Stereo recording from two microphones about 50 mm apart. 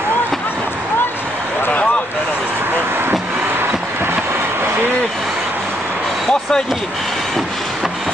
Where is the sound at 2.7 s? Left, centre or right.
Right.